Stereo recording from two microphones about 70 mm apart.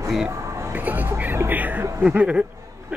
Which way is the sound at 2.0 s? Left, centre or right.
Centre.